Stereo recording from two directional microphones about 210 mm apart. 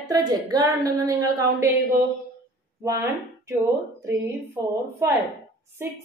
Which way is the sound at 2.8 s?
15° right (ahead or behind).